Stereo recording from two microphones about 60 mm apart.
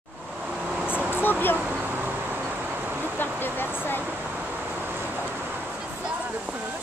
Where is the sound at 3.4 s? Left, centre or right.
Left.